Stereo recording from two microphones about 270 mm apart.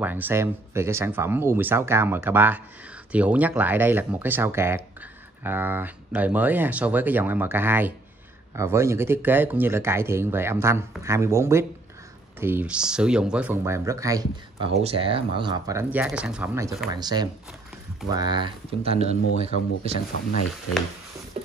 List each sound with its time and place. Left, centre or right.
0.0 s speech: centre; by 20.0 s right